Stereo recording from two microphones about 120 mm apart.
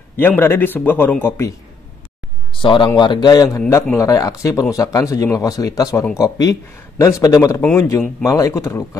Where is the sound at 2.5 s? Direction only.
45° left (ahead or behind).